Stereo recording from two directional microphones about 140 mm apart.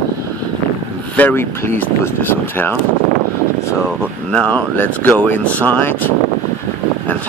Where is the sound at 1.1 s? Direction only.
15° left (ahead or behind).